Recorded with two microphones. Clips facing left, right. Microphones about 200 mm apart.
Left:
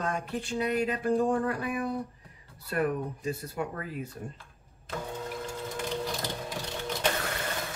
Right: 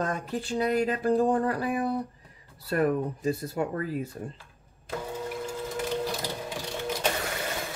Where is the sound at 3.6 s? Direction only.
40° right (ahead or behind).